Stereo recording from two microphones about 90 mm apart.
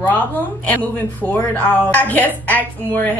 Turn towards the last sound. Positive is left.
turn(degrees=20)  # may be behind; listen again after turning